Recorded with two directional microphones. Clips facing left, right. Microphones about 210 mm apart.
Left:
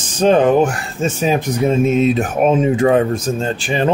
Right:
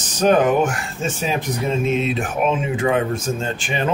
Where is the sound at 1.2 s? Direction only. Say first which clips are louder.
Left 7 dB; 45° left (ahead or behind).